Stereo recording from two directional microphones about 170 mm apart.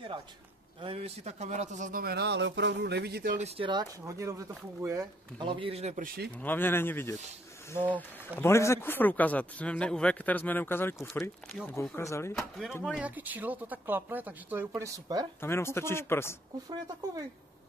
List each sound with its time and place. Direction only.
0.7 s a man's voice: 35° right (ahead or behind); by 3.3 s 70° right (ahead or behind)
3.3 s speech: 35° right (ahead or behind)
6.0 s a man's voice: 65° right (ahead or behind)
6.3 s speech: 10° left (ahead or behind)
8.4 s speech: 15° left (ahead or behind)
11.1 s speech: centre (ahead or behind)
11.7 s speech: 15° left (ahead or behind)
12.4 s speech: centre (ahead or behind); by 15.2 s 20° right (ahead or behind)
15.4 s speech: 15° left (ahead or behind)